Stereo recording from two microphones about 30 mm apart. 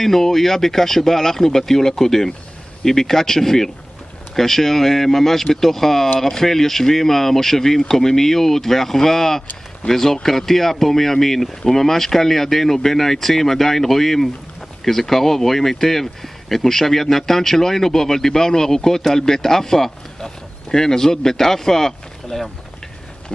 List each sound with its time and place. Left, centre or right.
0.0 s speech: centre